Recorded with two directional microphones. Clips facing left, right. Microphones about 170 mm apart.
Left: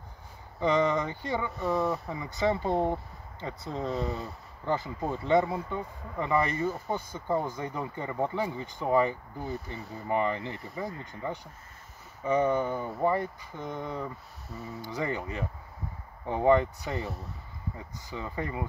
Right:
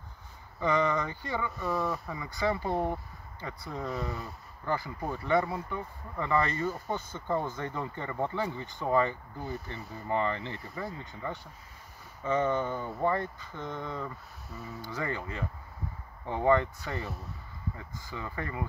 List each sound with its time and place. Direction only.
0.6 s speech: 20° left (ahead or behind)